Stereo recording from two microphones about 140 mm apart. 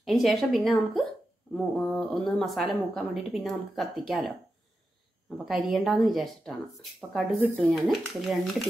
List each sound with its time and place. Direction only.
0.0 s speech: centre (ahead or behind)
5.4 s speech: centre (ahead or behind)